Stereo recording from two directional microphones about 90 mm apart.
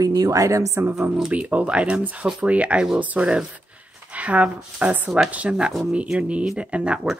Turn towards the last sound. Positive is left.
turn(degrees=-15)  # may be behind; listen again after turning